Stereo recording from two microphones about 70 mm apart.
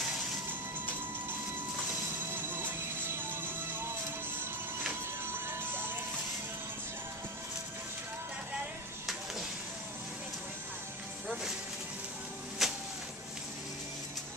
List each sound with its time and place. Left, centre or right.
2.3 s music: right
12.6 s music: centre